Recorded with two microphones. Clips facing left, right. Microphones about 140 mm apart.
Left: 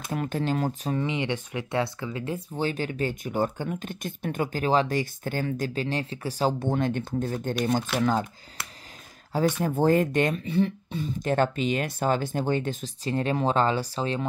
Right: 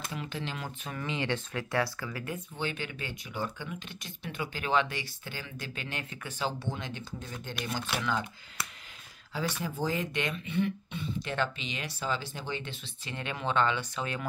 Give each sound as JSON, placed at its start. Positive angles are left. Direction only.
{"t": 0.1, "sound": "speech", "side_deg": 45}
{"t": 0.9, "sound": "speech", "side_deg": 20}
{"t": 9.6, "sound": "speech", "side_deg": 55}